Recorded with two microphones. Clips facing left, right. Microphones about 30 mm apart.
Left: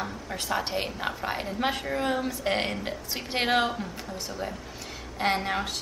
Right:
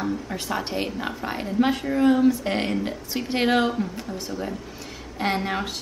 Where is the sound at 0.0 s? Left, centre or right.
Centre.